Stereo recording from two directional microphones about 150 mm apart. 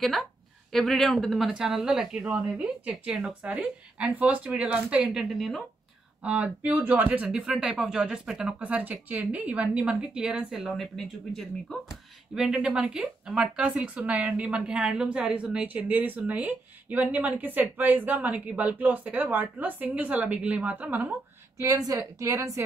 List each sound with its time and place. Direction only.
0.0 s speech: centre (ahead or behind)
12.4 s speech: 5° right (ahead or behind)
21.5 s speech: 25° right (ahead or behind)